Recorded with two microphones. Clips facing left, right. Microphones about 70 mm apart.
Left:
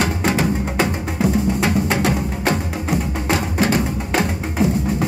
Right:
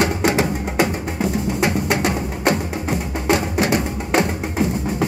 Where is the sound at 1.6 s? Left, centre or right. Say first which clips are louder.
Left 1 dB; centre.